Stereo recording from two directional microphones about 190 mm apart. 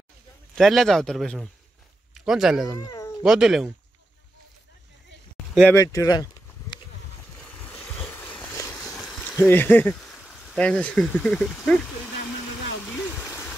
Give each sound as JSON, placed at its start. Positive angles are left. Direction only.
{"t": 0.6, "sound": "speech", "side_deg": 0}
{"t": 2.7, "sound": "speech", "side_deg": 20}
{"t": 3.2, "sound": "speech", "side_deg": -5}
{"t": 5.7, "sound": "speech", "side_deg": 15}
{"t": 8.0, "sound": "a sound", "side_deg": 5}
{"t": 8.8, "sound": "speech", "side_deg": 0}
{"t": 12.8, "sound": "stream", "side_deg": 0}